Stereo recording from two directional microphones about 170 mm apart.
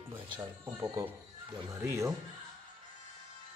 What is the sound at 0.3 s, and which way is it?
Speech, 25° right (ahead or behind).